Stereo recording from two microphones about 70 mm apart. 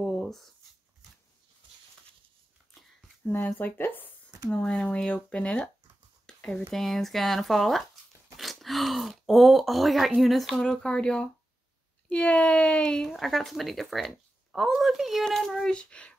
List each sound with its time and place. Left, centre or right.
0.0 s writing: centre
3.5 s speech: left
4.5 s speech: centre
6.2 s a sound: centre
6.7 s speech: centre
10.6 s speech: centre
13.1 s speech: centre